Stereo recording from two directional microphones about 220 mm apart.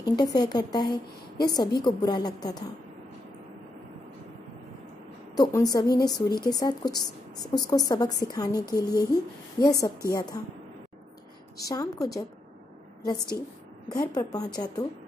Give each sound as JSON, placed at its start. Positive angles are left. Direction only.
{"t": 0.0, "sound": "a woman's voice", "side_deg": 15}
{"t": 5.3, "sound": "a woman's voice", "side_deg": 15}
{"t": 11.6, "sound": "a woman's voice", "side_deg": 15}
{"t": 13.8, "sound": "a woman's voice", "side_deg": 15}